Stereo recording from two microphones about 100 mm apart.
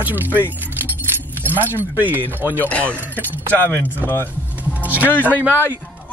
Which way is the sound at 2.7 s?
15° left (ahead or behind).